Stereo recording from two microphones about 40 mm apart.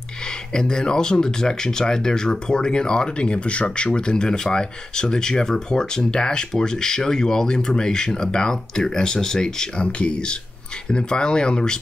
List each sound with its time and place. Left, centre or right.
0.5 s speech: centre